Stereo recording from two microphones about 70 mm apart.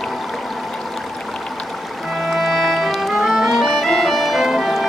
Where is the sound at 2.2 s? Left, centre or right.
Centre.